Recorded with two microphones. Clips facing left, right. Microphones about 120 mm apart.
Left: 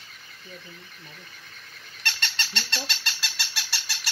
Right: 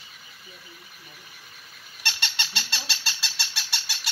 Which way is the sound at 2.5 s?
5° right (ahead or behind).